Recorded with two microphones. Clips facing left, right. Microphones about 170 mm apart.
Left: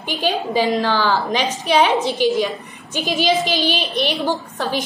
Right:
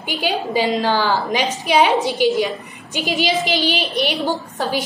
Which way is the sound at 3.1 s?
40° left (ahead or behind).